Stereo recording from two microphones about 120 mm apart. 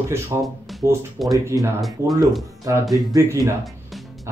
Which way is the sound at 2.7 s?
25° right (ahead or behind).